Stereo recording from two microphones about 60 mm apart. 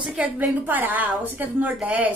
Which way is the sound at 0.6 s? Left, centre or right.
Right.